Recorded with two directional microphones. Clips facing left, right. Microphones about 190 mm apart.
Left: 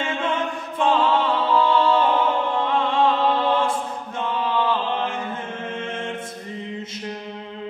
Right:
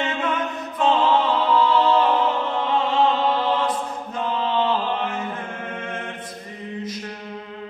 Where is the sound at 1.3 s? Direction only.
25° left (ahead or behind).